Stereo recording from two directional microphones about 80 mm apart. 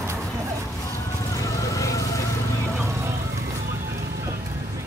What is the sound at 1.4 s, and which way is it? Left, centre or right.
Vehicle, left.